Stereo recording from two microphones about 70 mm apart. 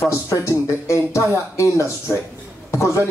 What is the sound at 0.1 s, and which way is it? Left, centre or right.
Speech, left.